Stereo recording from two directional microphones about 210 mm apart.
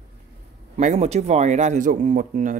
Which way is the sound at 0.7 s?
30° right (ahead or behind).